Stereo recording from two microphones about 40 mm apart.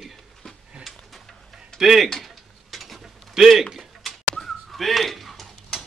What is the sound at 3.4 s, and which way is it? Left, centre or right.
Speech, centre.